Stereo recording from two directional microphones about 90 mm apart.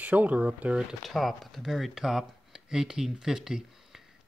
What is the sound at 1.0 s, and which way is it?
Speech, centre (ahead or behind).